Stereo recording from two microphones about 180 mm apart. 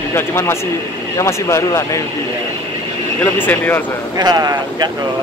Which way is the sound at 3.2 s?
10° left (ahead or behind).